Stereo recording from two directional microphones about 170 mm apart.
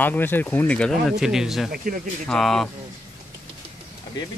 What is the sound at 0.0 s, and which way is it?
Speech, 10° left (ahead or behind).